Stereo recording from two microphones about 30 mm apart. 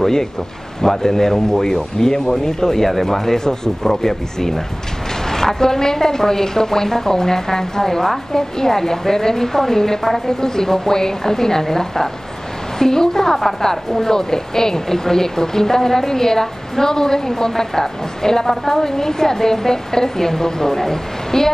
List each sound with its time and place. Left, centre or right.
0.0 s a woman's voice: centre